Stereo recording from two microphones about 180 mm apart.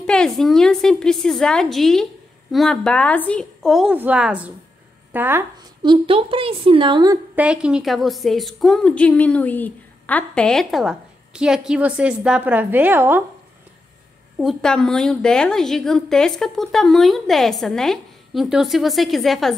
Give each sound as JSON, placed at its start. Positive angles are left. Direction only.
{"t": 0.0, "sound": "a woman's voice", "side_deg": 5}
{"t": 5.8, "sound": "a woman's voice", "side_deg": -30}
{"t": 7.3, "sound": "a woman's voice", "side_deg": -5}
{"t": 14.4, "sound": "a woman's voice", "side_deg": 0}